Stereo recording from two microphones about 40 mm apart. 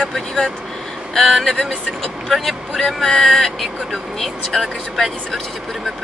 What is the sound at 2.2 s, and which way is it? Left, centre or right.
Speech, centre.